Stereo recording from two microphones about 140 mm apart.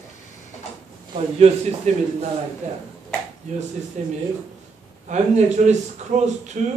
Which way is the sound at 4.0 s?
55° right (ahead or behind).